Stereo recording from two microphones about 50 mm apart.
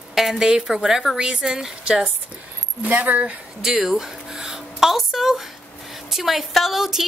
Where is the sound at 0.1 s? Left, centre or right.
Centre.